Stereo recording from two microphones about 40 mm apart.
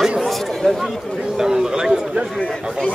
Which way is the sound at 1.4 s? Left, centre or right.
Centre.